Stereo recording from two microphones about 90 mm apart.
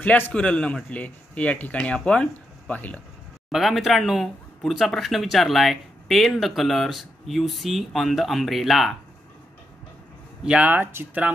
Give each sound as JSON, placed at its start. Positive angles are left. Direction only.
{"t": 0.0, "sound": "speech", "side_deg": 15}
{"t": 3.5, "sound": "speech", "side_deg": 0}
{"t": 10.4, "sound": "speech", "side_deg": -10}
{"t": 10.7, "sound": "speech", "side_deg": -25}